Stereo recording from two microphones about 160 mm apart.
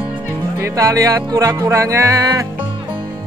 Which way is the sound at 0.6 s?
25° right (ahead or behind).